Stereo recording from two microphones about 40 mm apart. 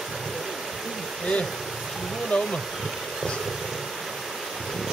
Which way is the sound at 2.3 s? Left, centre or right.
Left.